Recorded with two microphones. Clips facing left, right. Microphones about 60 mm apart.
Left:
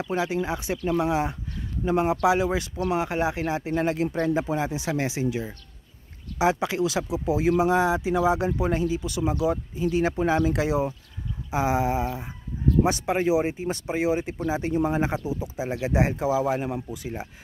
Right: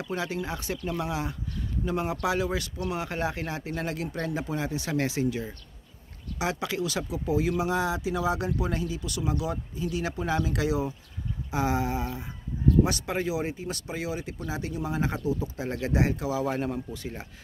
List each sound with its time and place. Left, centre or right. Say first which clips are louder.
0.0 s speech: left 5 dB; left
15.0 s speech: left 2 dB; left